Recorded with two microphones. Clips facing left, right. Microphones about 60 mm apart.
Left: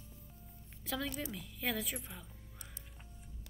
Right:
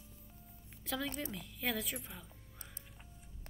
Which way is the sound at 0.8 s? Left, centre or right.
Centre.